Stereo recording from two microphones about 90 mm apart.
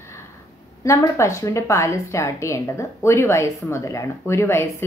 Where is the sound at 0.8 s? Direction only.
35° left (ahead or behind).